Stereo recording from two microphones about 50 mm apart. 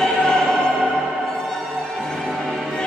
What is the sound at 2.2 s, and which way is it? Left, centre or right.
Music, centre.